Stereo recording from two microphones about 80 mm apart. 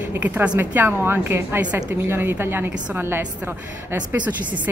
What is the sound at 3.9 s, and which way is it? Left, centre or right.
Speech, centre.